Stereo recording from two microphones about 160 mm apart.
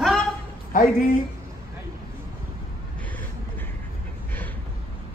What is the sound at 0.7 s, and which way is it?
Speech, 60° left (ahead or behind).